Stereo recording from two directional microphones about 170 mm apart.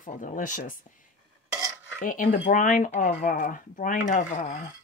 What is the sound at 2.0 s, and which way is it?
Speech, 50° left (ahead or behind).